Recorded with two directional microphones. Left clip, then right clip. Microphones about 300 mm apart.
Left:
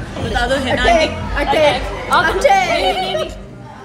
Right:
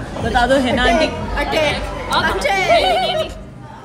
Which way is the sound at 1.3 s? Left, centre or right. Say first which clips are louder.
Left 8 dB; left.